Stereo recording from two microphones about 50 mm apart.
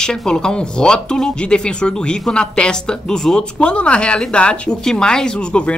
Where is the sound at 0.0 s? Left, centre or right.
Centre.